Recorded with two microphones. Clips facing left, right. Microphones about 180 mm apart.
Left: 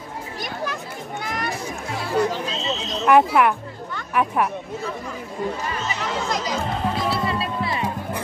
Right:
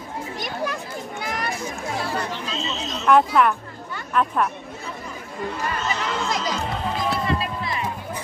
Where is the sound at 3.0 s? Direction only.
10° left (ahead or behind).